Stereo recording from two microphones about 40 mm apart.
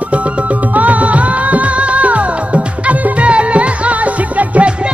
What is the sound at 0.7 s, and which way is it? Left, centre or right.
Music, right.